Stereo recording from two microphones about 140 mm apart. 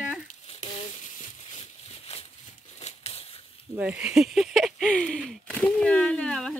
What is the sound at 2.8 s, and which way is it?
Crumpling, 45° left (ahead or behind).